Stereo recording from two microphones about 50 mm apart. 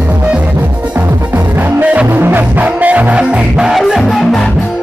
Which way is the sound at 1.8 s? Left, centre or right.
Right.